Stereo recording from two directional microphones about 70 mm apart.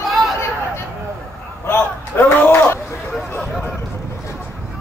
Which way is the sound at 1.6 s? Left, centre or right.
Left.